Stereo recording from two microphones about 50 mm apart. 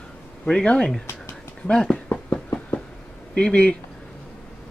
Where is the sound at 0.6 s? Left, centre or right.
Left.